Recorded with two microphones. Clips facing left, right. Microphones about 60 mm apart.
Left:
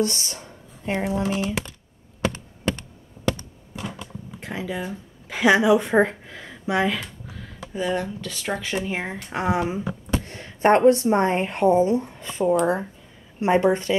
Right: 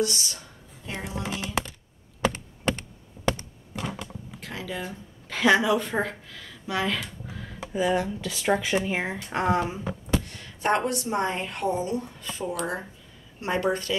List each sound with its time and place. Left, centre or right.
0.0 s speech: left
2.3 s computer keyboard: right
4.4 s speech: left
5.9 s speech: left
6.9 s speech: centre
9.5 s speech: centre
10.1 s speech: left